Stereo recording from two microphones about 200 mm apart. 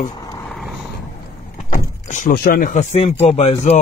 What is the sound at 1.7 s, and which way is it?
Vehicle, 40° left (ahead or behind).